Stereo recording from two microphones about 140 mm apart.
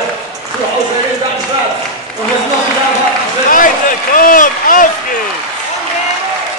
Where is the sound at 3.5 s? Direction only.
75° left (ahead or behind).